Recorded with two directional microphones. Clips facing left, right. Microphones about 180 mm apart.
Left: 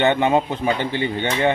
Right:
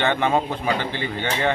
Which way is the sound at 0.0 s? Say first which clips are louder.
Left 3 dB; 20° left (ahead or behind).